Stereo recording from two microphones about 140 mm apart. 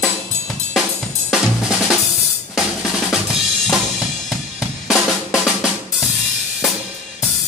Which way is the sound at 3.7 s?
Centre (ahead or behind).